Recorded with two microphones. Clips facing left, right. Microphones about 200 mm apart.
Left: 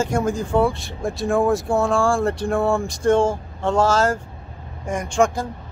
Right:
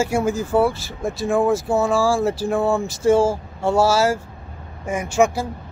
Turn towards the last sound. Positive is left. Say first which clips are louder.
# right 1 dB
turn(degrees=-5)  # may be behind; listen again after turning